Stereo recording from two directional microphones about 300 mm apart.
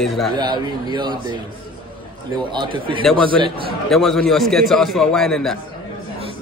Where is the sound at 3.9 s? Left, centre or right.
Centre.